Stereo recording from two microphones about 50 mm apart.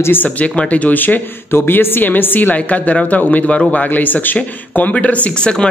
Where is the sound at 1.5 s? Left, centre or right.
Left.